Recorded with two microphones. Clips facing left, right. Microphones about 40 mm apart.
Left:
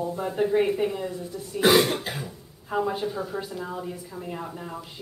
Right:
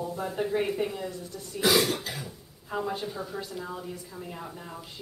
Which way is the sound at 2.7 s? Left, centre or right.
Centre.